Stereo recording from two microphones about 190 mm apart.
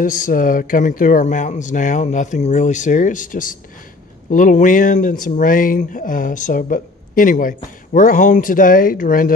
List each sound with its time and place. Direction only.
0.0 s speech: 45° left (ahead or behind)